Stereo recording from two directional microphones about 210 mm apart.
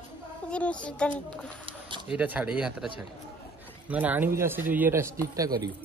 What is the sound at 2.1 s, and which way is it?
Speech, 5° right (ahead or behind).